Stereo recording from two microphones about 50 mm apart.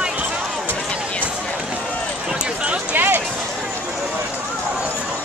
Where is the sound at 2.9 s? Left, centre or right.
Right.